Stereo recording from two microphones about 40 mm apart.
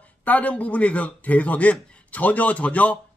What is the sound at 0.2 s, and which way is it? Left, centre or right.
Speech, left.